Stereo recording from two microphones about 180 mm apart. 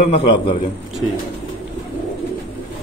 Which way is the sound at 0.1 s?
30° left (ahead or behind).